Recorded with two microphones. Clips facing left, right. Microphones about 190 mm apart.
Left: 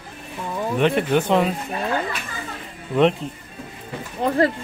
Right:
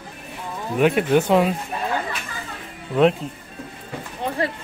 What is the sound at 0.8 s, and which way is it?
Speech, 5° right (ahead or behind).